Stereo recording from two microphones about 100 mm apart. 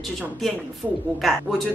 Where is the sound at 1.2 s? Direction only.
Centre (ahead or behind).